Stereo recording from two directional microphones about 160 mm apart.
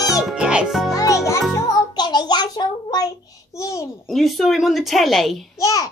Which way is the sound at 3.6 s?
20° left (ahead or behind).